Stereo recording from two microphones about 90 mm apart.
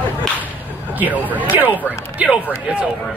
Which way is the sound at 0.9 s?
20° right (ahead or behind).